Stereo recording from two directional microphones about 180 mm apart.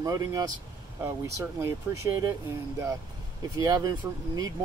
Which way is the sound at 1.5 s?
15° right (ahead or behind).